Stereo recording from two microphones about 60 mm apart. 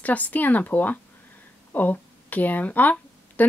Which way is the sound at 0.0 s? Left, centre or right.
Left.